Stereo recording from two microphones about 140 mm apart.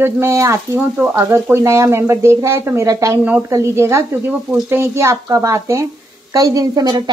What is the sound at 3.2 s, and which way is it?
A woman's voice, 10° right (ahead or behind).